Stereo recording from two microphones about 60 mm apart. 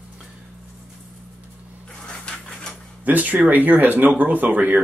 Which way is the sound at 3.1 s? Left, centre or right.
Right.